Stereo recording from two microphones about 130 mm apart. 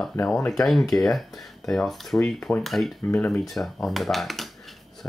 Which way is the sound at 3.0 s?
15° left (ahead or behind).